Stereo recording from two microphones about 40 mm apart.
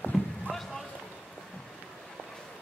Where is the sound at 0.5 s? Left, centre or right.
Centre.